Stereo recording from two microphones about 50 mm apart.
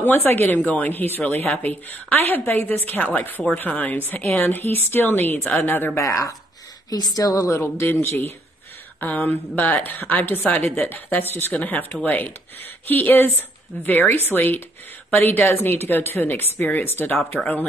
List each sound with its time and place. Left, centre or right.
0.0 s a woman's voice: left
5.9 s speech: left
7.6 s speech: left
9.0 s a woman's voice: left